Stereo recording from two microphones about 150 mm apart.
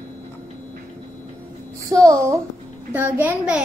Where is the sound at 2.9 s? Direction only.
15° right (ahead or behind).